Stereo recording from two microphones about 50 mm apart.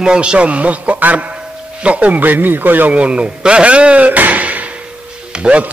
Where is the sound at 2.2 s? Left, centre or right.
Right.